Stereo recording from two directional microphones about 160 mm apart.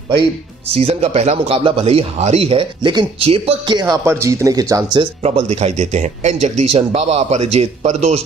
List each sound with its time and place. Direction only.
0.7 s speech: 40° right (ahead or behind)